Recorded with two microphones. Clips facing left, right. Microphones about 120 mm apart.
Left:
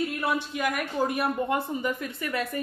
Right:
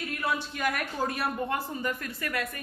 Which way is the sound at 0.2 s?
10° left (ahead or behind).